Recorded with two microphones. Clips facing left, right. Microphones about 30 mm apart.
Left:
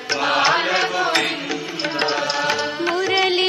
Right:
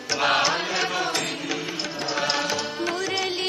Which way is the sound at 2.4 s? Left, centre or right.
Left.